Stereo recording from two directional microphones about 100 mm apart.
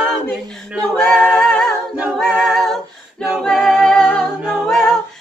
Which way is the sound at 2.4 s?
5° left (ahead or behind).